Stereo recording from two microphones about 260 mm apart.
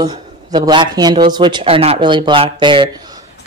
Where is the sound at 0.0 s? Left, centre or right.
Centre.